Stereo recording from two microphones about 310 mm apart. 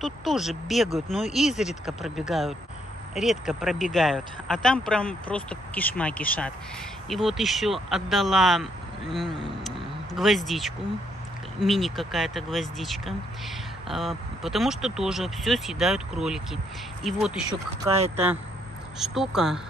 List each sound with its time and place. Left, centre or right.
0.0 s speech: centre
9.6 s a sound: centre
11.6 s speech: centre
17.5 s speech: centre
18.9 s speech: centre